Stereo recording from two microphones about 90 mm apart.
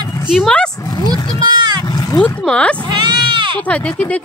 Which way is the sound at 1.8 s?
45° left (ahead or behind).